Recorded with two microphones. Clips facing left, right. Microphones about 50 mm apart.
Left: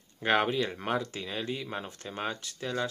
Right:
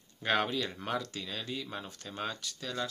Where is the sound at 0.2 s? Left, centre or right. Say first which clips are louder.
Left 4 dB; left.